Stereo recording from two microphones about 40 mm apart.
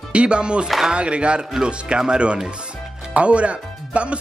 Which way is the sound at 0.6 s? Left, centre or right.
Centre.